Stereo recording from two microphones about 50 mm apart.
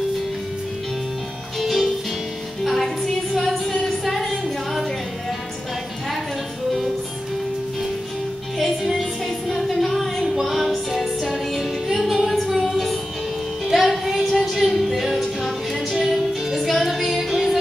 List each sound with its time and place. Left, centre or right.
1.6 s music: centre
3.8 s a sound: centre
8.5 s music: centre